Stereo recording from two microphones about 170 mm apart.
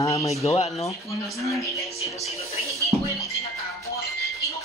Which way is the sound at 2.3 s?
20° left (ahead or behind).